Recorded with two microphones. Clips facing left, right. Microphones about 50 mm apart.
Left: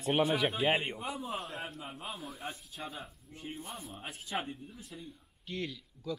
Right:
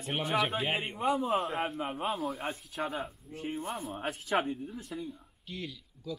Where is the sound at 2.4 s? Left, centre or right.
Right.